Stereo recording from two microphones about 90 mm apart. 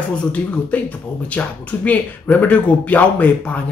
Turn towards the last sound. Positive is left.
turn(degrees=15)  # may be behind; listen again after turning